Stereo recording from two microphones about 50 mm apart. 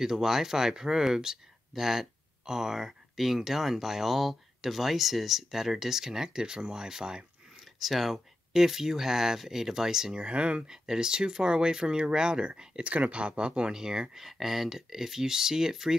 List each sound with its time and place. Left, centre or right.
0.0 s speech: centre
7.5 s speech: centre
10.1 s speech: right